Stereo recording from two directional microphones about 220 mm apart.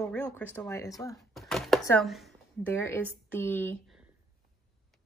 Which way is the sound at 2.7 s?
10° left (ahead or behind).